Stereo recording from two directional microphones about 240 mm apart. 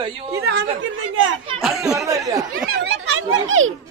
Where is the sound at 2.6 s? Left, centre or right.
Right.